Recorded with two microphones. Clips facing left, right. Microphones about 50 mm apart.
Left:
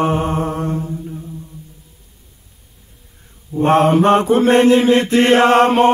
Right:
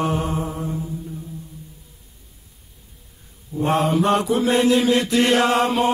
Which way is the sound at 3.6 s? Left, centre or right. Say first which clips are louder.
Left 7 dB; left.